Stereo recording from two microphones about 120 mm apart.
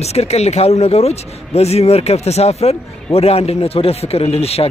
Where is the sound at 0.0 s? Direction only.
60° left (ahead or behind).